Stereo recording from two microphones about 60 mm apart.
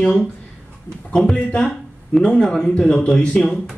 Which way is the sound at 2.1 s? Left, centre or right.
Centre.